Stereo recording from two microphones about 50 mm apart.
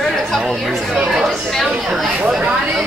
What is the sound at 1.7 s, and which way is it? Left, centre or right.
Speech, centre.